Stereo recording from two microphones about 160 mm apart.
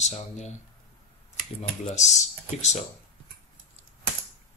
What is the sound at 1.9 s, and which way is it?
Speech, 45° left (ahead or behind).